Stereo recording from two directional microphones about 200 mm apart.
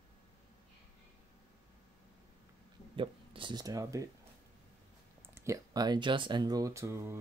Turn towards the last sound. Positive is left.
turn(degrees=-15)  # may be behind; listen again after turning